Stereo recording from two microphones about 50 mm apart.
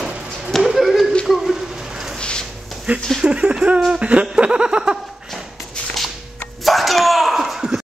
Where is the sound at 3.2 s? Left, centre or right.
Centre.